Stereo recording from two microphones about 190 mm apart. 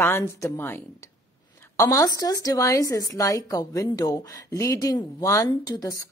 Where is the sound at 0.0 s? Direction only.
15° left (ahead or behind).